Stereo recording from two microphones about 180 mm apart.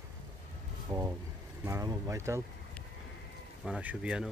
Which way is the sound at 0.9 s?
15° right (ahead or behind).